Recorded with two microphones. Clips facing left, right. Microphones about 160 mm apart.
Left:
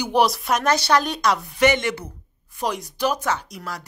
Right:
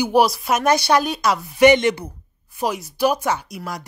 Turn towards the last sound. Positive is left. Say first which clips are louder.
# right 2 dB
turn(degrees=-10)  # may be behind; listen again after turning